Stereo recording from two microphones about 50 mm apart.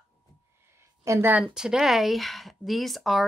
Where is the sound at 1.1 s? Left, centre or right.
Right.